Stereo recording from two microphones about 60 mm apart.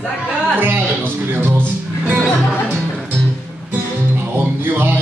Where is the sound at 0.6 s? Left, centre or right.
Right.